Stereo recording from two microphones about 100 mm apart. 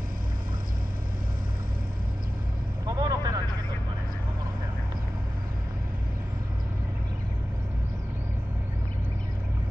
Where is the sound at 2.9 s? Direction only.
40° right (ahead or behind).